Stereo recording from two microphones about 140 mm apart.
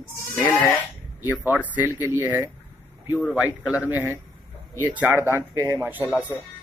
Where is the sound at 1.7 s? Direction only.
10° right (ahead or behind).